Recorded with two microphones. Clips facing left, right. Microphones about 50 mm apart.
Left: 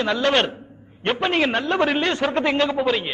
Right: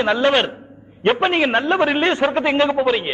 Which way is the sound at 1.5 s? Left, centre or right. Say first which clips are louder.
Right 3 dB; right.